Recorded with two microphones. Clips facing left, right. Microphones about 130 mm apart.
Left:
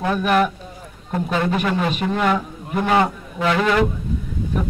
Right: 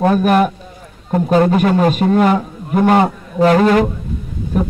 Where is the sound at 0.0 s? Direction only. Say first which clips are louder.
Right 6 dB; 45° right (ahead or behind).